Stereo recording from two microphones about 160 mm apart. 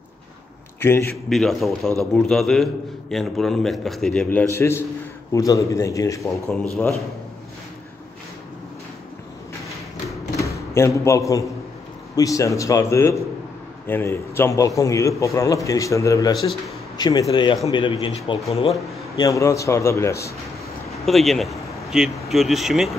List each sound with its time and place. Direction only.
0.7 s a man's voice: 15° left (ahead or behind)
1.3 s a man's voice: centre (ahead or behind); by 6.4 s 20° left (ahead or behind)
6.5 s a man's voice: 5° left (ahead or behind)
10.4 s a sound: 20° left (ahead or behind)
11.1 s a man's voice: 20° left (ahead or behind)
19.1 s a man's voice: 20° left (ahead or behind)
21.0 s speech: centre (ahead or behind)